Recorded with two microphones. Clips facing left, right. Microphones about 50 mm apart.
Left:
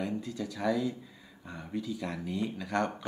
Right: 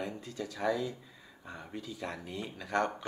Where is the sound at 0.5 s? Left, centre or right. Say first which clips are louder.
Left 1 dB; centre.